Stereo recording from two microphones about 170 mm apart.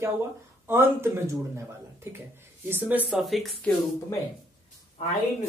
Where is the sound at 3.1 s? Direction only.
Centre (ahead or behind).